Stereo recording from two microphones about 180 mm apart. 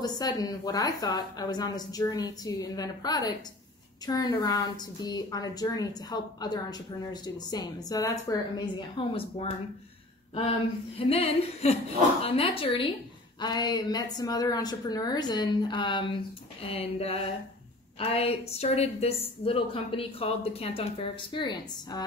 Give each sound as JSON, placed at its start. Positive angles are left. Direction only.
{"t": 0.0, "sound": "a woman's voice", "side_deg": 20}
{"t": 11.0, "sound": "a woman's voice", "side_deg": 30}